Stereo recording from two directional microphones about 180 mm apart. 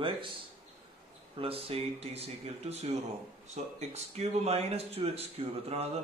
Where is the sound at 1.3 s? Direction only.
30° right (ahead or behind).